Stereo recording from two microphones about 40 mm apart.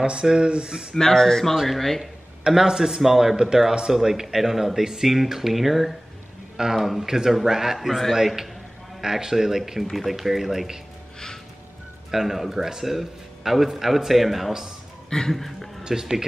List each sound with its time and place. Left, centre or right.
0.0 s speech: right
0.9 s a man's voice: centre
2.4 s a man's voice: centre
12.1 s a man's voice: centre
15.0 s a man's voice: centre
15.8 s speech: centre